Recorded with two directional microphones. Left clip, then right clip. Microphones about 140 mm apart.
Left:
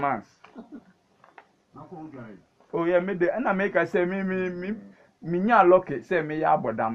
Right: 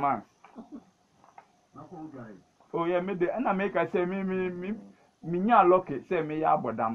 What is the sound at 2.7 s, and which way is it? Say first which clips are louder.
A man's voice: left 5 dB; 30° left (ahead or behind).